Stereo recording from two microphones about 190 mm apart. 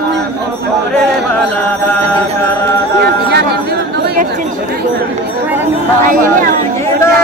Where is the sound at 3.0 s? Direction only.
55° right (ahead or behind).